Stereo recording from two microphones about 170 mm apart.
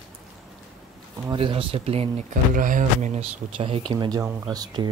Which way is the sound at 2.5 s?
50° right (ahead or behind).